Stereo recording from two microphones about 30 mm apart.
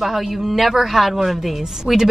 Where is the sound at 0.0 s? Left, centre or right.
Centre.